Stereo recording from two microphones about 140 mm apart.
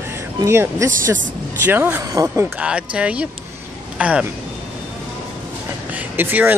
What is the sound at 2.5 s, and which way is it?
Speech, 10° right (ahead or behind).